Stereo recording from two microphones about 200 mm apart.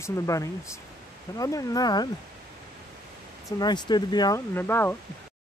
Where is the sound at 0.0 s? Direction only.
15° left (ahead or behind).